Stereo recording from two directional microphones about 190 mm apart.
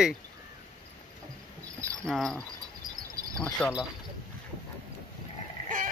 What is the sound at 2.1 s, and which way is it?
Speech, centre (ahead or behind).